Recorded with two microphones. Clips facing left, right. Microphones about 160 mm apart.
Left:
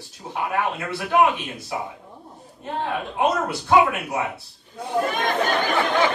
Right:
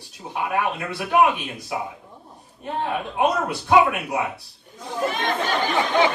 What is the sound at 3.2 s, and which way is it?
Speech, 15° right (ahead or behind).